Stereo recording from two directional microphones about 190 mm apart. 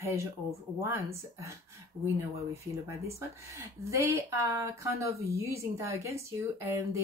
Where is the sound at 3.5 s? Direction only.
15° right (ahead or behind).